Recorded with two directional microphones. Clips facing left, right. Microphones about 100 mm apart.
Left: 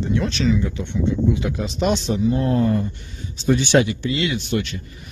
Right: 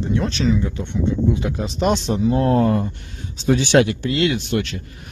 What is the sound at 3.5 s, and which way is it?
Speech, 65° right (ahead or behind).